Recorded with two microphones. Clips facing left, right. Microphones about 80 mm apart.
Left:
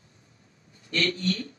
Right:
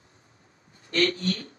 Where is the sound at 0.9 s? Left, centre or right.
Right.